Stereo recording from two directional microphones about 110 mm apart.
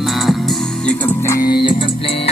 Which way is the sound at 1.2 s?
30° left (ahead or behind).